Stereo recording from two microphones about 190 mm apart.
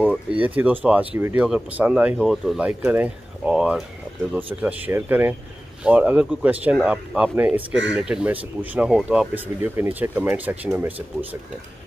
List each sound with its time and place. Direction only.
0.0 s speech: 5° right (ahead or behind)